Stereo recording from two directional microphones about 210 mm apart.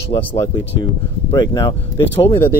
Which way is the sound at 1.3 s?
20° left (ahead or behind).